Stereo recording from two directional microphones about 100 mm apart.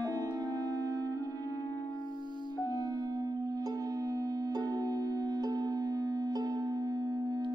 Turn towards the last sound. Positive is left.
turn(degrees=-40)  # may be behind; listen again after turning